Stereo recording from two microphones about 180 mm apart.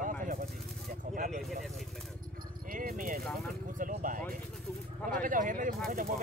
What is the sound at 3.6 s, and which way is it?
Vehicle, 50° right (ahead or behind).